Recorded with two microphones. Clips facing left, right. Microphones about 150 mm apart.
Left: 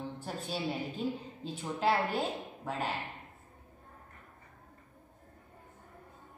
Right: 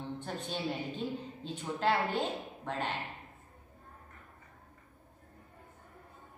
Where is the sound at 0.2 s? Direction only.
5° left (ahead or behind).